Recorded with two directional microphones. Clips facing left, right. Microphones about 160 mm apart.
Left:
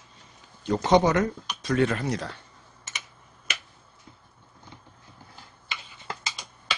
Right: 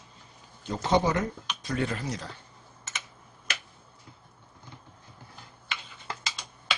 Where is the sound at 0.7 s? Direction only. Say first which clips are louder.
Left 5 dB; 75° left (ahead or behind).